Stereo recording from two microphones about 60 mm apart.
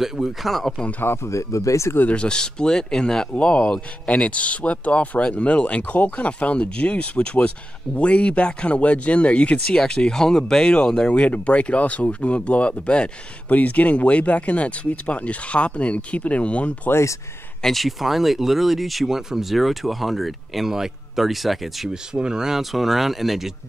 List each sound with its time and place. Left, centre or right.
0.0 s speech: centre
1.3 s speech: left
2.0 s speech: centre
17.6 s speech: centre
22.1 s speech: centre